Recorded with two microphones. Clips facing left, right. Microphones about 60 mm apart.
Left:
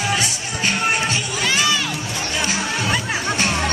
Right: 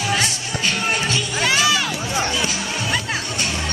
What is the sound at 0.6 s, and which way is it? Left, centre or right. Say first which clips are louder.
Music: left 2 dB; left.